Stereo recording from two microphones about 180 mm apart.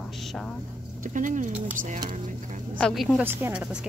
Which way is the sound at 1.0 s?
45° right (ahead or behind).